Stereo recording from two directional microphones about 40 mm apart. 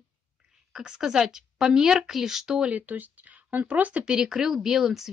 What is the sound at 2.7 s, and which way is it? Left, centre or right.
Speech, right.